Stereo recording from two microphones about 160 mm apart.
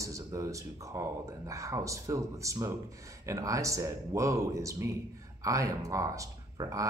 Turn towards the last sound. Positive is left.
turn(degrees=-20)  # may be behind; listen again after turning